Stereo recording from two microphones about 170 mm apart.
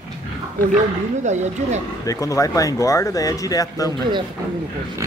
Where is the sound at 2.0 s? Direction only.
20° left (ahead or behind).